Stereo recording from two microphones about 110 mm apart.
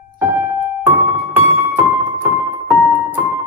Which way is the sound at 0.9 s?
20° right (ahead or behind).